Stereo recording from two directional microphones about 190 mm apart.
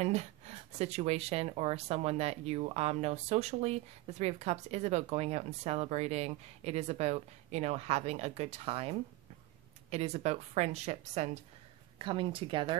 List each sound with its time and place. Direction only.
0.0 s speech: 35° right (ahead or behind)